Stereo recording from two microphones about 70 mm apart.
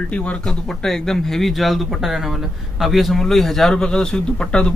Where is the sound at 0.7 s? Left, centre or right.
Centre.